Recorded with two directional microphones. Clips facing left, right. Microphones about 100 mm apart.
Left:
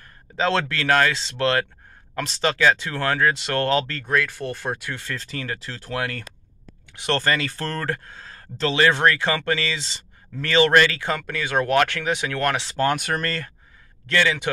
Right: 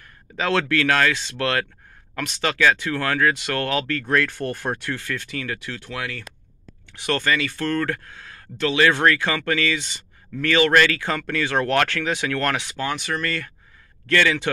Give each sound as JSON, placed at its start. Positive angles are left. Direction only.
{"t": 0.4, "sound": "speech", "side_deg": 25}
{"t": 4.0, "sound": "speech", "side_deg": 10}
{"t": 4.9, "sound": "speech", "side_deg": 30}
{"t": 12.7, "sound": "speech", "side_deg": 50}
{"t": 14.0, "sound": "speech", "side_deg": 20}